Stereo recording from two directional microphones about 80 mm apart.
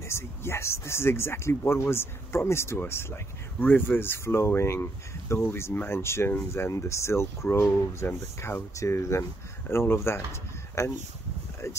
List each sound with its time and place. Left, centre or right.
0.1 s speech: left